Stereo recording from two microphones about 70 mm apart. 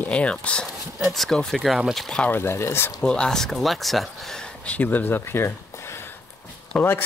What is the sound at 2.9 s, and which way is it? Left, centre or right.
Speech, centre.